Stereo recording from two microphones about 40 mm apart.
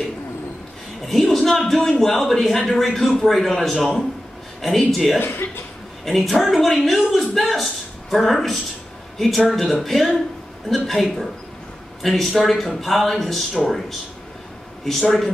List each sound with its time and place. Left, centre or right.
1.3 s a man's voice: centre
5.2 s speech: left
6.0 s a man's voice: centre